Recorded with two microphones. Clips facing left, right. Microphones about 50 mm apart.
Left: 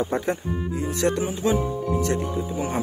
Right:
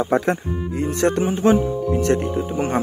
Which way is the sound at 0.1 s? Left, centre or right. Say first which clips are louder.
Right 6 dB; right.